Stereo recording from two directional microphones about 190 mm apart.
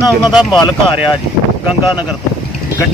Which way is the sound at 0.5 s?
25° left (ahead or behind).